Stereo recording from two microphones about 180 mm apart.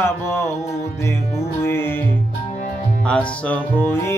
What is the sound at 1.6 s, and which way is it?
Music, 15° left (ahead or behind).